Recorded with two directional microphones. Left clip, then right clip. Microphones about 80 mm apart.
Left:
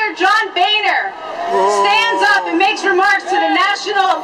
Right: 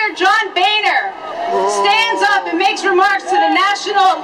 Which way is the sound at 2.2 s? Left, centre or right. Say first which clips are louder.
Left 1 dB; centre.